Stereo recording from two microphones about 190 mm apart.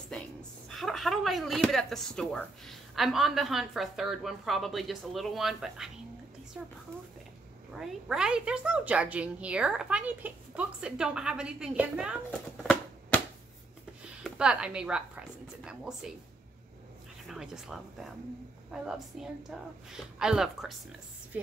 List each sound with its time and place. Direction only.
0.7 s speech: centre (ahead or behind)
7.7 s speech: 5° right (ahead or behind)
12.3 s a sound: 10° left (ahead or behind)
14.2 s speech: 5° right (ahead or behind)
17.3 s speech: centre (ahead or behind)